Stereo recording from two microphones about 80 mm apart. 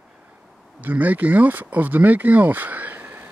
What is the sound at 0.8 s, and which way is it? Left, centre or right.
Speech, right.